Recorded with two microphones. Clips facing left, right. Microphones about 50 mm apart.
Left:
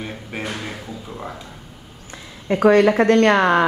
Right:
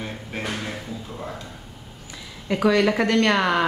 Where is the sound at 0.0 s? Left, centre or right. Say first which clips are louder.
Left 2 dB; centre.